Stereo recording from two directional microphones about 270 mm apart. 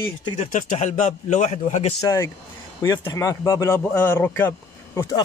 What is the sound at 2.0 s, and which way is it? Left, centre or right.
Speech, centre.